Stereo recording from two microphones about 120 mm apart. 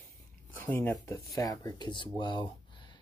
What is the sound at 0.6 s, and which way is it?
Speech, 15° left (ahead or behind).